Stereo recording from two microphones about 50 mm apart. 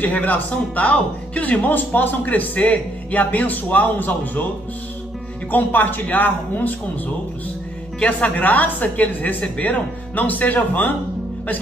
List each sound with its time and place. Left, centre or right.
0.0 s a man's voice: left
5.5 s a man's voice: left
8.0 s a man's voice: left